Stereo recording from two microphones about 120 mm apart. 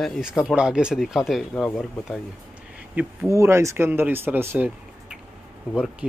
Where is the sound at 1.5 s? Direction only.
10° left (ahead or behind).